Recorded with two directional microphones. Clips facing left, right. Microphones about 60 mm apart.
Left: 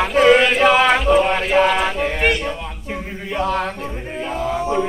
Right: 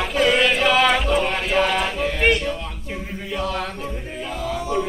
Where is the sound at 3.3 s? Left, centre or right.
Left.